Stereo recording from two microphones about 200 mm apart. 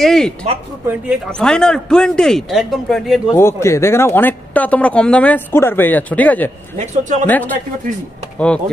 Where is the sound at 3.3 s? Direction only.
15° left (ahead or behind).